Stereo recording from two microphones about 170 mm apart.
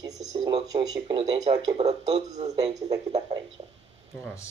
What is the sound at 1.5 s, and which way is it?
Speech, 25° right (ahead or behind).